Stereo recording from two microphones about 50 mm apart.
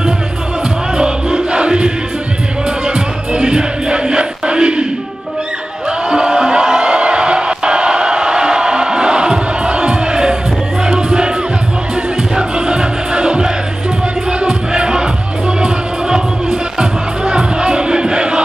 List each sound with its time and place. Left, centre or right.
0.9 s music: centre
2.9 s music: centre
5.9 s music: centre